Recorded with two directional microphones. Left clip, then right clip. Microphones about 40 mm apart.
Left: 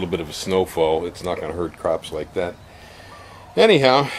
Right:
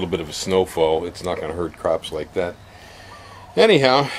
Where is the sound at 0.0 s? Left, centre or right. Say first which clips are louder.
Right 1 dB; right.